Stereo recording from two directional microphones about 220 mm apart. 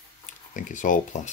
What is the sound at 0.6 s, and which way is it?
Speech, 35° left (ahead or behind).